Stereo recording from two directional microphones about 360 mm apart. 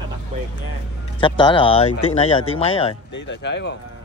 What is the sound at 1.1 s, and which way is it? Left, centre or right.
Speech, centre.